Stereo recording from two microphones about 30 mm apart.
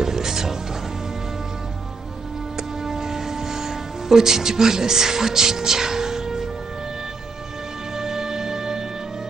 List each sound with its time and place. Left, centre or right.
0.0 s music: centre
2.8 s music: centre
8.0 s music: centre